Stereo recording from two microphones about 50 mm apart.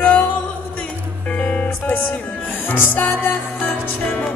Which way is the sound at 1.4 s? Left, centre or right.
Left.